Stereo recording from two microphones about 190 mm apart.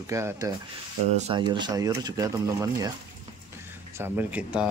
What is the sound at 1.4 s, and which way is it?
Speech, 25° right (ahead or behind).